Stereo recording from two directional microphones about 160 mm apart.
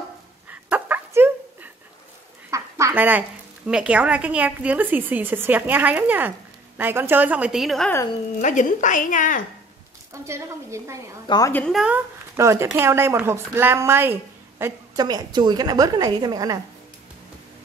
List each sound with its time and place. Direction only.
0.5 s dog: 10° right (ahead or behind)
2.5 s speech: 15° right (ahead or behind); by 7.9 s centre (ahead or behind)
8.4 s speech: 50° left (ahead or behind)
10.1 s speech: 20° right (ahead or behind)
11.2 s a woman's voice: 25° left (ahead or behind)
11.7 s speech: 5° right (ahead or behind)
12.4 s a woman's voice: 20° right (ahead or behind)